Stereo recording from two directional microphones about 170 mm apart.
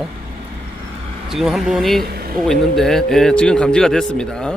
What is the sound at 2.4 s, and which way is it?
Speech, centre (ahead or behind).